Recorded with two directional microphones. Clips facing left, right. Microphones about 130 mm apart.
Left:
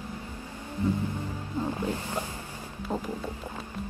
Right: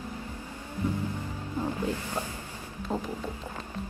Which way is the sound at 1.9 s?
15° left (ahead or behind).